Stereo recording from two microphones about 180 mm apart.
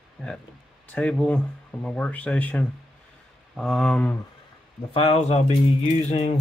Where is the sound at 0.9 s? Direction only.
5° left (ahead or behind).